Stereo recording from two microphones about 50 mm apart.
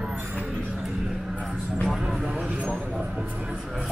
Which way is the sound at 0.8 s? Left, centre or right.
Centre.